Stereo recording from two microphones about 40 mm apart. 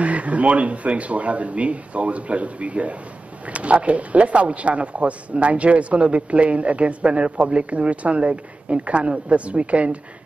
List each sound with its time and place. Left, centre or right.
0.0 s speech: right